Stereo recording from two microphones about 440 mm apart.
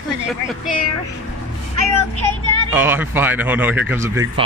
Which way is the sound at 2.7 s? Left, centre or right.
Centre.